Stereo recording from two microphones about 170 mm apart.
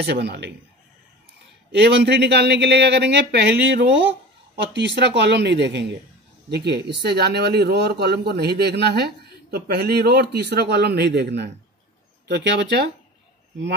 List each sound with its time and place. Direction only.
0.0 s speech: 75° right (ahead or behind)
1.7 s speech: 85° right
6.5 s speech: 75° right (ahead or behind)